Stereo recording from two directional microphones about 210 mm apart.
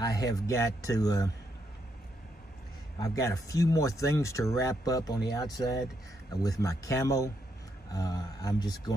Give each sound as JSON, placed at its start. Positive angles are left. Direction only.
{"t": 0.0, "sound": "speech", "side_deg": 15}
{"t": 3.0, "sound": "speech", "side_deg": 15}